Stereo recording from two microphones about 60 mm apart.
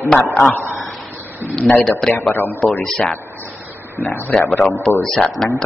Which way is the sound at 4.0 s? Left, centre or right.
Left.